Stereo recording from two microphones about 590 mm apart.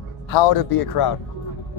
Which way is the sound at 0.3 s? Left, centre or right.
Left.